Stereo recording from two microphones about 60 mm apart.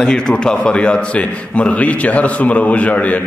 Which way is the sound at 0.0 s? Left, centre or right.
Centre.